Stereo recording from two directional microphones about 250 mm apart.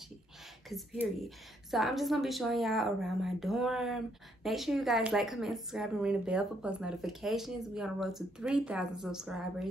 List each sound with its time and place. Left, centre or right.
0.7 s a woman's voice: centre